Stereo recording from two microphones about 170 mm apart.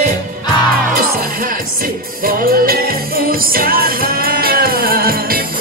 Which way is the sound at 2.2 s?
60° right (ahead or behind).